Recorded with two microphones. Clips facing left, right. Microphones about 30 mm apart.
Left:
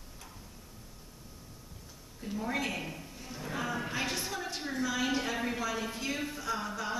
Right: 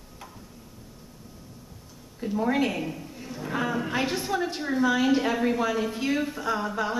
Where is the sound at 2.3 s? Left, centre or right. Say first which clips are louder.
Right 9 dB; right.